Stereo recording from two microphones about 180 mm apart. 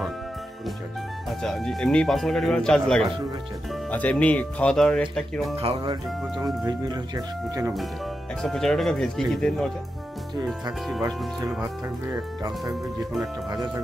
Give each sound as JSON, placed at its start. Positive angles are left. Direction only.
{"t": 1.4, "sound": "a man's voice", "side_deg": 0}
{"t": 5.6, "sound": "speech", "side_deg": -30}
{"t": 6.4, "sound": "speech", "side_deg": -20}
{"t": 8.4, "sound": "a man's voice", "side_deg": 0}
{"t": 11.6, "sound": "speech", "side_deg": -20}